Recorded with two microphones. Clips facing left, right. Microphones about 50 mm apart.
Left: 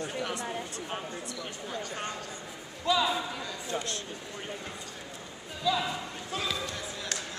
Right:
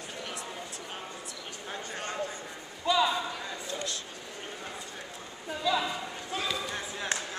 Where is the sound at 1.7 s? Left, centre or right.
Right.